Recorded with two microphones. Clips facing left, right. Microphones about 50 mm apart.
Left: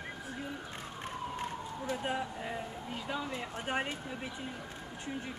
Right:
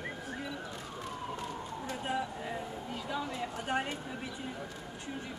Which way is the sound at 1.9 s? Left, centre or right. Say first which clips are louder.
Even; centre.